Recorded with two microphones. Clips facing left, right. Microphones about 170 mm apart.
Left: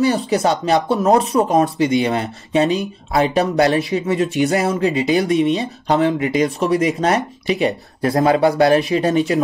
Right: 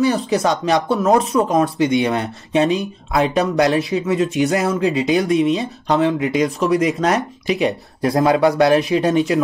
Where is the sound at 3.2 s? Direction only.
30° left (ahead or behind).